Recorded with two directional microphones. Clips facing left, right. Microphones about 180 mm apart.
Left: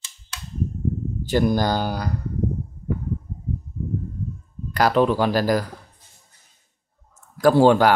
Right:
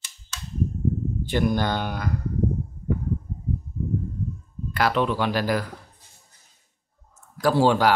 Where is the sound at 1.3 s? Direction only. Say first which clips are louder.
Left 4 dB; 35° left (ahead or behind).